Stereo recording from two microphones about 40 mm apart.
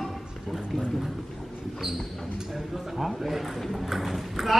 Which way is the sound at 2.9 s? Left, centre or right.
Centre.